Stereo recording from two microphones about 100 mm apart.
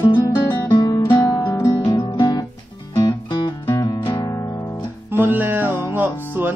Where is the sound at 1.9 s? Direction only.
35° left (ahead or behind).